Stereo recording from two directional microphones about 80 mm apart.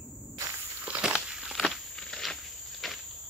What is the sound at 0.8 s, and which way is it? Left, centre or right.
Walk, centre.